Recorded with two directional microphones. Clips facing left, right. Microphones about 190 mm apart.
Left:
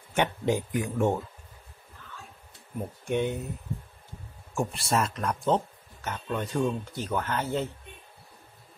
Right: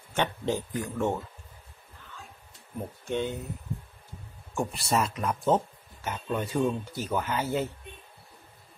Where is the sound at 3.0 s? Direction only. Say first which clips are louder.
Left 3 dB; 15° left (ahead or behind).